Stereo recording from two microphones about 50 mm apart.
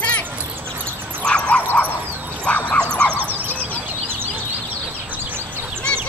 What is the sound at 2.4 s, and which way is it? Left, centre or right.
Dog, left.